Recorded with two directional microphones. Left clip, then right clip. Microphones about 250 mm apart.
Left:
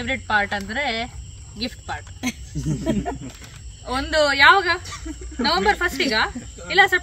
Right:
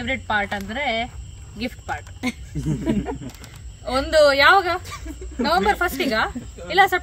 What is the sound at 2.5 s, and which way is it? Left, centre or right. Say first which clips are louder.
Speech: right 1 dB; centre.